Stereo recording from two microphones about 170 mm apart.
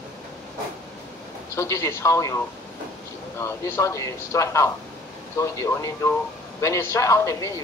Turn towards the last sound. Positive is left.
turn(degrees=15)  # may be behind; listen again after turning